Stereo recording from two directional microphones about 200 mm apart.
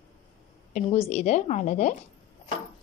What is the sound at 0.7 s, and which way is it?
A woman's voice, 30° left (ahead or behind).